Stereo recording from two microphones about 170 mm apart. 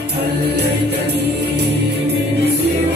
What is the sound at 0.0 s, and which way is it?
Music, 75° right (ahead or behind).